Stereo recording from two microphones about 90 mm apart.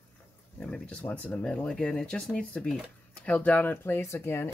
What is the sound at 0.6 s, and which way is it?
Speech, 15° left (ahead or behind).